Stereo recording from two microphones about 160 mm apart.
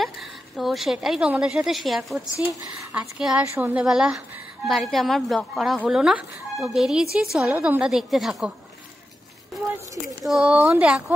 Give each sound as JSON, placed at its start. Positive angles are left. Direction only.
{"t": 0.0, "sound": "a woman's voice", "side_deg": 0}
{"t": 10.2, "sound": "a woman's voice", "side_deg": -5}